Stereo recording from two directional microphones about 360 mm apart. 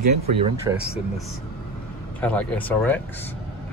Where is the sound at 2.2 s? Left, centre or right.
Centre.